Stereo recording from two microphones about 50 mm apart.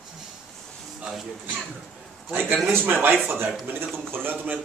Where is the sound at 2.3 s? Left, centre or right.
Right.